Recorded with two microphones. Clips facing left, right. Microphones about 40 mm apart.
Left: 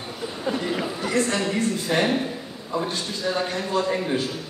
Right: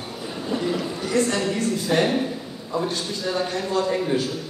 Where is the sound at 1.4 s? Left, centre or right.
Centre.